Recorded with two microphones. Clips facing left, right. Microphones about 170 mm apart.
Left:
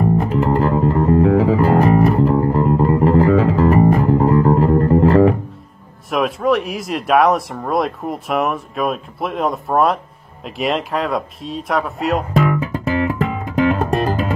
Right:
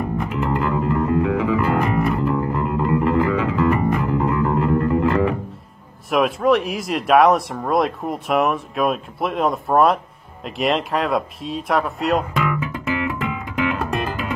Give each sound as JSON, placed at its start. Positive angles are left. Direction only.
{"t": 0.0, "sound": "music", "side_deg": 35}
{"t": 6.0, "sound": "speech", "side_deg": 0}
{"t": 12.4, "sound": "music", "side_deg": 40}